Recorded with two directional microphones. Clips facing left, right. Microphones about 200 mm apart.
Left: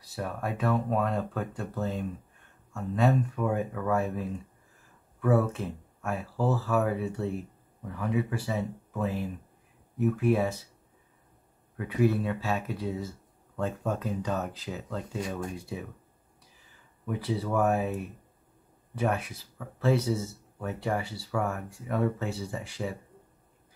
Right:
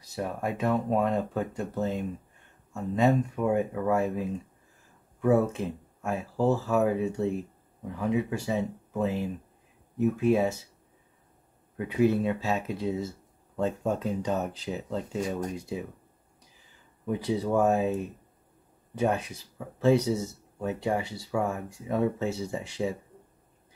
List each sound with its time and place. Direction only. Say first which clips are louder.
0.1 s speech: right 2 dB; 15° right (ahead or behind)
11.7 s speech: right 2 dB; 20° right (ahead or behind)
17.0 s speech: right 3 dB; 20° right (ahead or behind)